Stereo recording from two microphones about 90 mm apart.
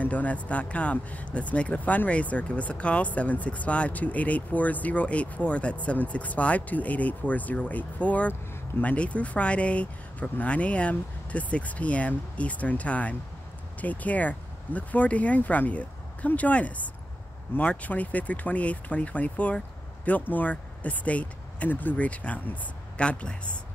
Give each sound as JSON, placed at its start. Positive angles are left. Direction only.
{"t": 0.0, "sound": "speech", "side_deg": 15}